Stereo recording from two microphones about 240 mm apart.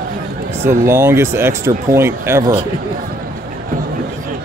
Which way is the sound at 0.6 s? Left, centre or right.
Centre.